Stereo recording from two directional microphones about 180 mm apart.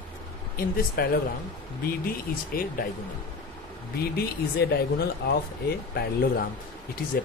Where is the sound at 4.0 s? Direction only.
60° left (ahead or behind).